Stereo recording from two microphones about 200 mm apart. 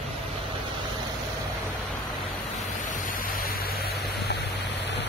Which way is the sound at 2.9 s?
40° left (ahead or behind).